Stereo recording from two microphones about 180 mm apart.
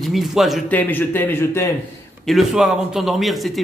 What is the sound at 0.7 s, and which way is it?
A man's voice, 10° left (ahead or behind).